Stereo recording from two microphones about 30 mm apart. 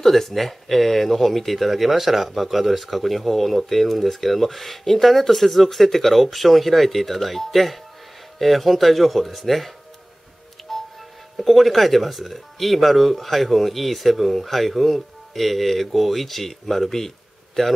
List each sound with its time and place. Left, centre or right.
0.0 s speech: centre
10.6 s music: centre
11.3 s a man's voice: centre